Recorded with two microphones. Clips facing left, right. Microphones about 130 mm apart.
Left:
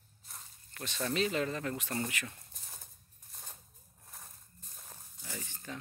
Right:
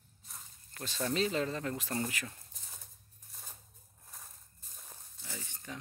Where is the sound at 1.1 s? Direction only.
30° right (ahead or behind).